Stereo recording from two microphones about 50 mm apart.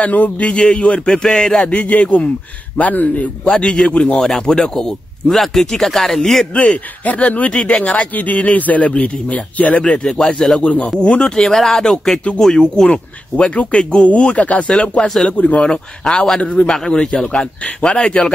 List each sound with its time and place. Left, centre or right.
0.0 s speech: left; by 1.6 s centre
1.6 s speech: left
3.4 s speech: centre
4.2 s speech: centre
6.5 s speech: left
9.8 s speech: centre
10.6 s speech: left
11.3 s speech: centre
12.8 s speech: left
14.7 s speech: centre
15.2 s speech: left
15.6 s speech: centre